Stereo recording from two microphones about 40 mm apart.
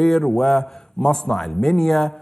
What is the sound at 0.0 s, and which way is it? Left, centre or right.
A man's voice, centre.